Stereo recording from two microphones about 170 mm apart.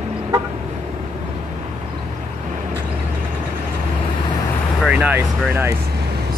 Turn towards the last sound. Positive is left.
turn(degrees=-15)  # may be behind; listen again after turning